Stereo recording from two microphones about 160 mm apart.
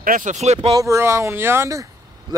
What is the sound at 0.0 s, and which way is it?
Speech, 55° right (ahead or behind).